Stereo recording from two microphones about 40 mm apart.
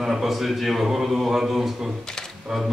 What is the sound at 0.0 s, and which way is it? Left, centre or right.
A man's voice, centre.